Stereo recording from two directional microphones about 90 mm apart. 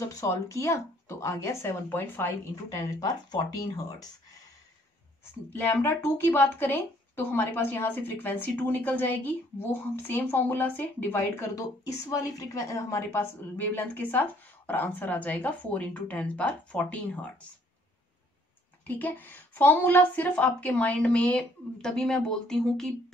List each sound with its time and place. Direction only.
0.1 s speech: 35° left (ahead or behind)
5.6 s speech: 25° left (ahead or behind)
18.9 s a woman's voice: 20° left (ahead or behind)